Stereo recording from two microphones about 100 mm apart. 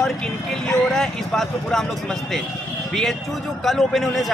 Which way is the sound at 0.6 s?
5° left (ahead or behind).